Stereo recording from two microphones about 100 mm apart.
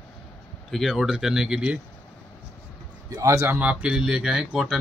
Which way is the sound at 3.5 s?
10° right (ahead or behind).